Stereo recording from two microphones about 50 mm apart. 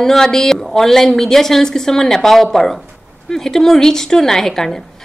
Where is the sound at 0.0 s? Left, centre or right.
Centre.